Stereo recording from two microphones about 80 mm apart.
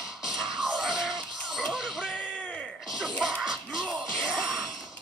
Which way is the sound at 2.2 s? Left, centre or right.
Centre.